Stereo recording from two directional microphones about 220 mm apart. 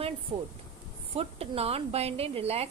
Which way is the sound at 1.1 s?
25° right (ahead or behind).